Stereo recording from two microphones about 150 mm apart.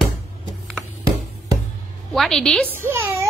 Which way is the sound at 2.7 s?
15° right (ahead or behind).